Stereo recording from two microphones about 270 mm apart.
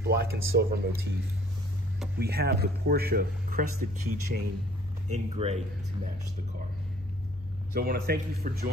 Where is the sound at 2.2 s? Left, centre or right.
Right.